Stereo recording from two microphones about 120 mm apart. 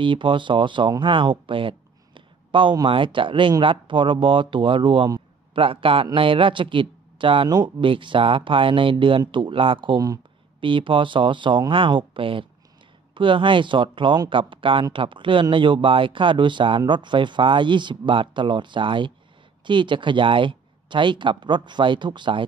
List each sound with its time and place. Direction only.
0.0 s speech: 45° right (ahead or behind)
10.6 s speech: 45° right (ahead or behind)